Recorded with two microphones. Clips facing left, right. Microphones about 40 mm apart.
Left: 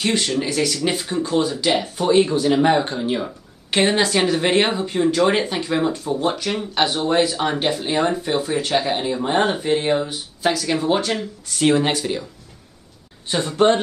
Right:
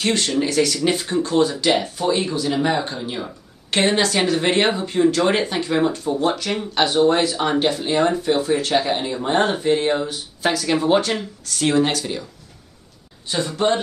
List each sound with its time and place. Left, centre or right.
0.0 s speech: centre
2.0 s speech: left
3.7 s speech: centre
6.1 s speech: centre
6.9 s speech: centre
10.4 s speech: centre
11.4 s speech: centre
13.3 s speech: left